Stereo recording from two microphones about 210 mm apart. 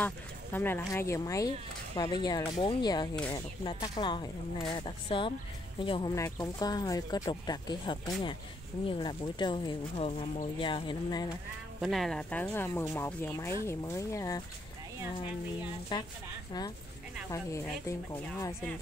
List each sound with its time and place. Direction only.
0.0 s speech: 10° left (ahead or behind)
11.8 s speech: centre (ahead or behind)
15.9 s speech: 20° left (ahead or behind)
17.3 s speech: 15° left (ahead or behind)